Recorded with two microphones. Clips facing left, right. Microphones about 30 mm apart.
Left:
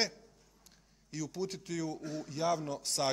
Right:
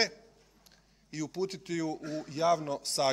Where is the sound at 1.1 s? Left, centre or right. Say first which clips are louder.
Right 3 dB; centre.